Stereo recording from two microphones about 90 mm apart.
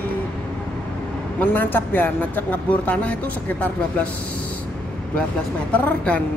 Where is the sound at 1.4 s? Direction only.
20° left (ahead or behind).